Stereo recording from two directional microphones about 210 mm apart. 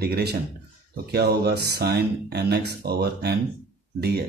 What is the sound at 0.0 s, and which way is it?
Speech, 50° right (ahead or behind).